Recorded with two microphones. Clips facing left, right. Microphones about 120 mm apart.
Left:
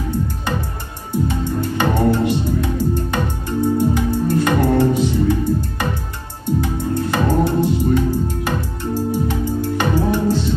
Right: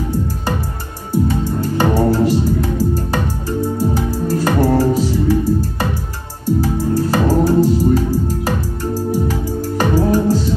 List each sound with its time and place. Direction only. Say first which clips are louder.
1.1 s music: right 3 dB; 35° right (ahead or behind)